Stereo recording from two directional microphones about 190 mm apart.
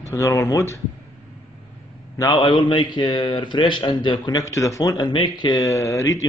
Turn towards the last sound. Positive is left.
turn(degrees=15)  # may be behind; listen again after turning